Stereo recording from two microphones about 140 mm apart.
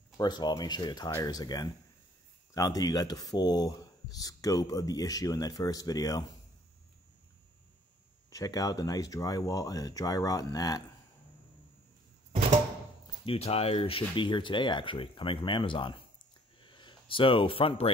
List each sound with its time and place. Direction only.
0.2 s speech: 30° left (ahead or behind)
8.3 s speech: 25° left (ahead or behind)
13.0 s speech: 40° left (ahead or behind)